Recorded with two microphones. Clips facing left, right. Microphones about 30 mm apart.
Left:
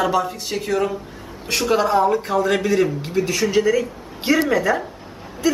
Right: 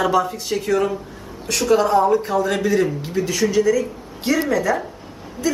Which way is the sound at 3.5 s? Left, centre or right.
Left.